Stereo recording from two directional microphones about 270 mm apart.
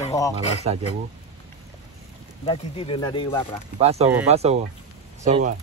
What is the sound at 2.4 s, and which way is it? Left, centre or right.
Speech, centre.